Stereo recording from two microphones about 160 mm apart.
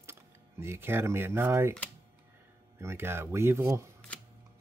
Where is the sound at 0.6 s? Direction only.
15° right (ahead or behind).